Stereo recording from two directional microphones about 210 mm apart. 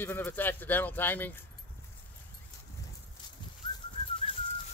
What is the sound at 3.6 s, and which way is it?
Bird, 20° left (ahead or behind).